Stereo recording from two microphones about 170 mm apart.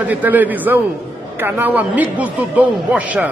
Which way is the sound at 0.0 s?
10° right (ahead or behind).